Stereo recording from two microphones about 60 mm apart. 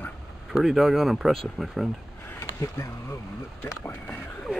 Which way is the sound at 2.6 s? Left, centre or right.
Left.